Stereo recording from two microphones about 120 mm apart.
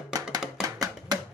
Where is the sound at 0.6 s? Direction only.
30° right (ahead or behind).